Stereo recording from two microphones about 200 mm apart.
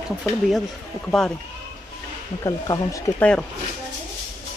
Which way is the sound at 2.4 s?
15° left (ahead or behind).